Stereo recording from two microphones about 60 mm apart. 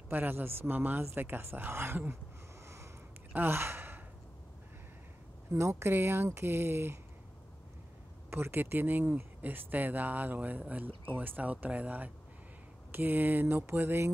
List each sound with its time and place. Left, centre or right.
0.1 s speech: right
2.6 s a sound: right
3.3 s gasp: right
5.5 s speech: right
8.3 s speech: right